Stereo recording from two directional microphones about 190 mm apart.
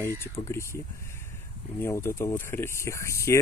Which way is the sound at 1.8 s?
15° left (ahead or behind).